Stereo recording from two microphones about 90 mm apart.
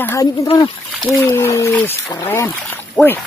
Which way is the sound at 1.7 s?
20° left (ahead or behind).